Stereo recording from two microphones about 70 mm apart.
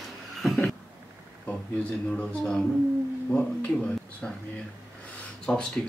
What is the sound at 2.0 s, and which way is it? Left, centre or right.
Speech, centre.